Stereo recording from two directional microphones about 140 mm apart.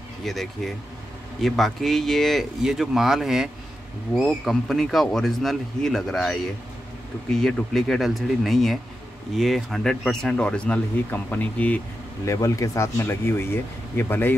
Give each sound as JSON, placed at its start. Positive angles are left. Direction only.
{"t": 0.2, "sound": "speech", "side_deg": 0}
{"t": 12.3, "sound": "speech", "side_deg": 25}